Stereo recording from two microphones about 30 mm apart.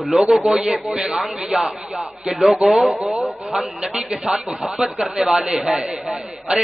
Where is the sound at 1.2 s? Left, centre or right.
Right.